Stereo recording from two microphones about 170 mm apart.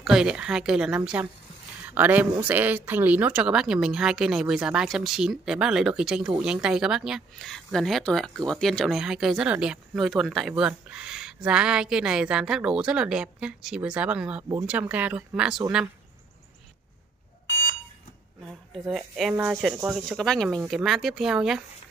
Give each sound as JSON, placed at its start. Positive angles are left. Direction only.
{"t": 0.0, "sound": "speech", "side_deg": -5}
{"t": 17.5, "sound": "alarm", "side_deg": 75}
{"t": 18.9, "sound": "speech", "side_deg": 0}
{"t": 20.1, "sound": "speech", "side_deg": 5}